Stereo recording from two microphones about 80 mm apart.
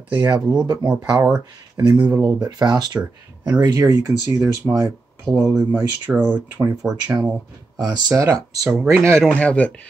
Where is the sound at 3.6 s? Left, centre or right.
Right.